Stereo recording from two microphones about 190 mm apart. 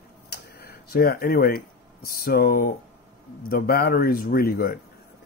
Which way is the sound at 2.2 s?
50° left (ahead or behind).